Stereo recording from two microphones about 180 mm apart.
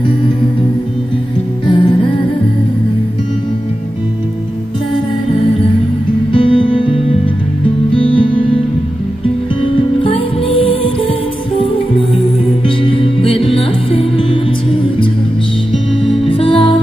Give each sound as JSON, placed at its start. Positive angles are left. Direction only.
{"t": 1.7, "sound": "music", "side_deg": 25}
{"t": 6.3, "sound": "music", "side_deg": 30}
{"t": 9.6, "sound": "music", "side_deg": 30}
{"t": 12.6, "sound": "music", "side_deg": 30}
{"t": 16.3, "sound": "music", "side_deg": 30}